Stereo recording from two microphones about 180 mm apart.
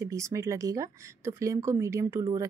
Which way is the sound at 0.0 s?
15° right (ahead or behind).